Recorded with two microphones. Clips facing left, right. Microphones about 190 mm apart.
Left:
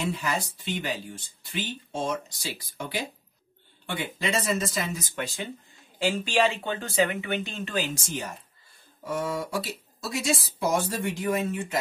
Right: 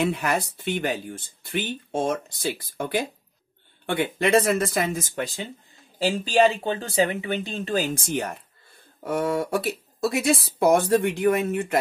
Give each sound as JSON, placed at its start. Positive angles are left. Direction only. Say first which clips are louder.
{"t": 0.0, "sound": "speech", "louder": "right 5 dB", "side_deg": -60}
{"t": 7.9, "sound": "speech", "louder": "right 6 dB", "side_deg": -55}